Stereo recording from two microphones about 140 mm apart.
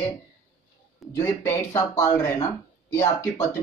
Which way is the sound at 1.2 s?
20° left (ahead or behind).